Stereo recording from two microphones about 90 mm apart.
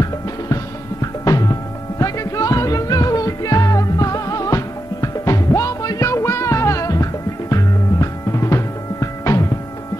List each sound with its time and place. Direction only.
1.2 s music: 40° left (ahead or behind)